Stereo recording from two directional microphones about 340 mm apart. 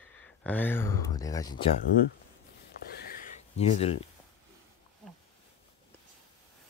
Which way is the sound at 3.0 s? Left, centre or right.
Left.